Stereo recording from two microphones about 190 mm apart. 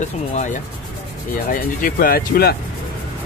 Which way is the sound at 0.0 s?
40° left (ahead or behind).